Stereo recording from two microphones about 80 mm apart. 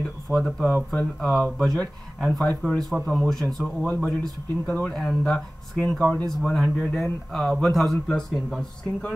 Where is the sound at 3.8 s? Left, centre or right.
Centre.